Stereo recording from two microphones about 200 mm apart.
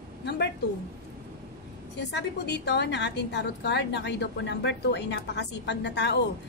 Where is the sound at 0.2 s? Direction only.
55° left (ahead or behind).